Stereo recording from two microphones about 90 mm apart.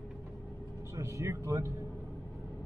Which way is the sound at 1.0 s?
35° right (ahead or behind).